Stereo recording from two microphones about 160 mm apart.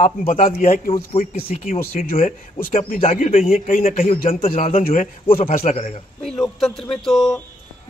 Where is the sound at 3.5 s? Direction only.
55° left (ahead or behind).